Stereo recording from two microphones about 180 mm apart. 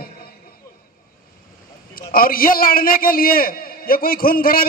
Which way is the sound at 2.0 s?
55° left (ahead or behind).